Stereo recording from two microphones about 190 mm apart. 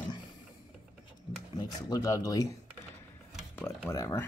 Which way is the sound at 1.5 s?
20° left (ahead or behind).